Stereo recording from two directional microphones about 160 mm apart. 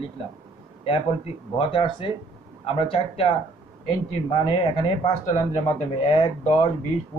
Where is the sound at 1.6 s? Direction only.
35° left (ahead or behind).